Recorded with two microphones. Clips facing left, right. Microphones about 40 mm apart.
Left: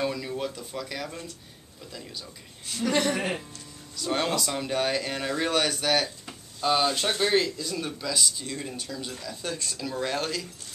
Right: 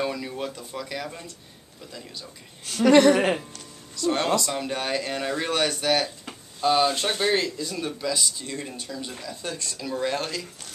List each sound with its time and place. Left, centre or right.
0.0 s speech: centre
2.6 s a woman's voice: right
3.9 s speech: centre